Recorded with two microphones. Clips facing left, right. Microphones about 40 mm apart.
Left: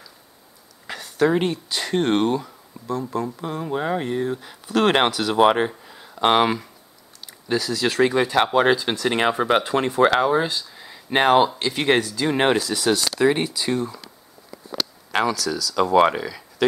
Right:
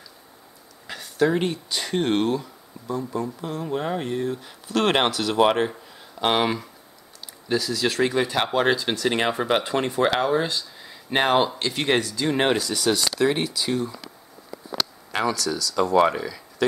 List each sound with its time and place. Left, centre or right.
0.8 s a sound: centre
1.8 s speech: centre
2.9 s speech: centre
3.3 s speech: centre
7.5 s speech: centre
15.7 s speech: left